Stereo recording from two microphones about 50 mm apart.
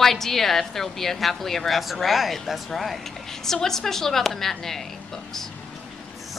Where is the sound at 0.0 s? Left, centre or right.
Centre.